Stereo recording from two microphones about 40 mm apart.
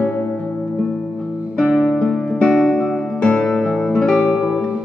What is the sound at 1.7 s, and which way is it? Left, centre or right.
Music, centre.